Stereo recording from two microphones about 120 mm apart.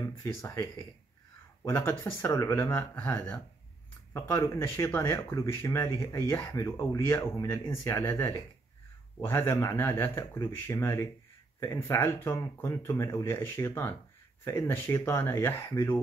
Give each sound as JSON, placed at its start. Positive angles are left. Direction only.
{"t": 0.2, "sound": "speech", "side_deg": 25}
{"t": 9.2, "sound": "speech", "side_deg": 20}